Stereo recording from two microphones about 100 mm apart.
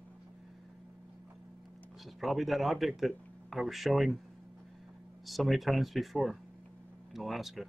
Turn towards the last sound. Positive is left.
turn(degrees=0)  # may be behind; listen again after turning